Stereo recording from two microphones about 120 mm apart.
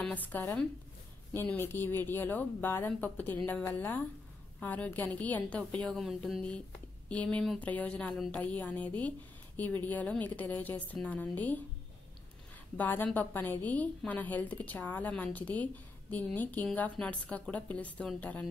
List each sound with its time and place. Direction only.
0.0 s a woman's voice: 15° left (ahead or behind)
7.1 s a woman's voice: 10° left (ahead or behind)
12.7 s a woman's voice: 15° left (ahead or behind)